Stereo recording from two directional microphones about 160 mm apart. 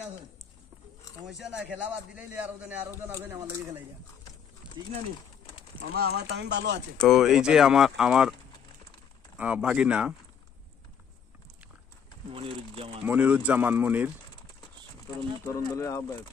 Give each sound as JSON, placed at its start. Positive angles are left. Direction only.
{"t": 1.2, "sound": "a man's voice", "side_deg": 0}
{"t": 5.9, "sound": "speech", "side_deg": -85}
{"t": 7.0, "sound": "speech", "side_deg": 0}
{"t": 9.4, "sound": "a man's voice", "side_deg": -5}
{"t": 12.3, "sound": "speech", "side_deg": -35}
{"t": 13.0, "sound": "a man's voice", "side_deg": -10}
{"t": 15.4, "sound": "speech", "side_deg": 20}